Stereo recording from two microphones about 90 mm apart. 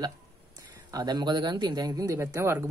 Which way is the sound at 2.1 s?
30° right (ahead or behind).